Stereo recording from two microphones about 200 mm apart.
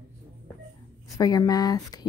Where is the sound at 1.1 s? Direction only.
20° left (ahead or behind).